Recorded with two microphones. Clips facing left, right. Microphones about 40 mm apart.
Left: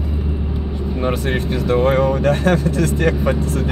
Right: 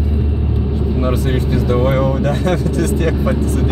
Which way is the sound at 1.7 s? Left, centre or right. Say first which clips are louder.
Left 2 dB; centre.